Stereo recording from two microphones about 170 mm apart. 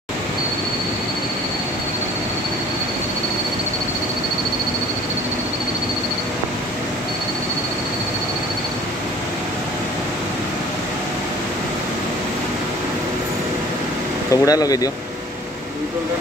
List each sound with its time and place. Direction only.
14.3 s speech: 20° left (ahead or behind)